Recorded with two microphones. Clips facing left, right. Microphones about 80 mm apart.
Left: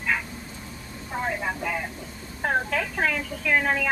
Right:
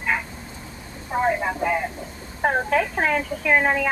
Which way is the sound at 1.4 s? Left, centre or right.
Right.